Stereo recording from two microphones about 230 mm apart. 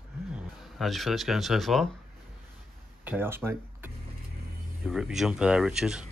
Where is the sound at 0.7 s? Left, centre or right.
Centre.